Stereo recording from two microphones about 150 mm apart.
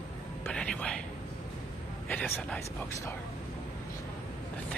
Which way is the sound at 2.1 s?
10° left (ahead or behind).